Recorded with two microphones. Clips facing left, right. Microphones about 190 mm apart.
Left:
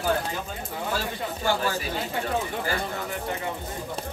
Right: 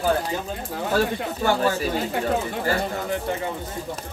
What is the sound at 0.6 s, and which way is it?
Speech, 55° right (ahead or behind).